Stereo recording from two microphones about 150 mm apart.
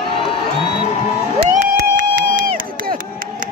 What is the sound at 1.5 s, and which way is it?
Crowd, 60° right (ahead or behind).